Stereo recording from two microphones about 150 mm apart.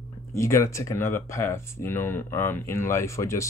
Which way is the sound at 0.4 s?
20° left (ahead or behind).